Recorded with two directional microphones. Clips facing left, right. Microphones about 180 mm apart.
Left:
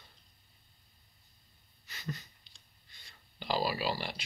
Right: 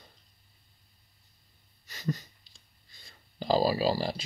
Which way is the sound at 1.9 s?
40° right (ahead or behind).